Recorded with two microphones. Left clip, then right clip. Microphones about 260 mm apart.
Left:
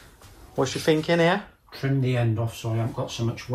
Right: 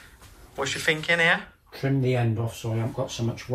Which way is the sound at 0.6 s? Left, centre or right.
Centre.